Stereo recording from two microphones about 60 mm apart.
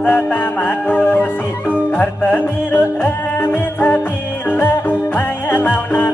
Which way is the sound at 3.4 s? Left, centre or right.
Left.